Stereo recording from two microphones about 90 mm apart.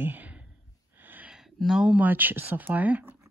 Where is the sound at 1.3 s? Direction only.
5° right (ahead or behind).